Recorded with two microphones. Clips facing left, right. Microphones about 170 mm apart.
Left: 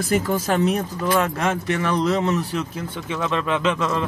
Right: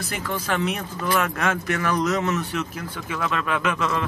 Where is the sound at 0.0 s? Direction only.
45° left (ahead or behind).